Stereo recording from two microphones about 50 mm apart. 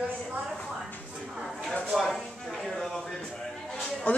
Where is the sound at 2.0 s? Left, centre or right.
Centre.